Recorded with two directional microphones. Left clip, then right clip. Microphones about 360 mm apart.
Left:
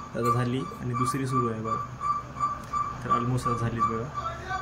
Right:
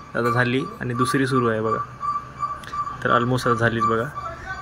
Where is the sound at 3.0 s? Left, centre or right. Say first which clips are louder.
Right 10 dB; right.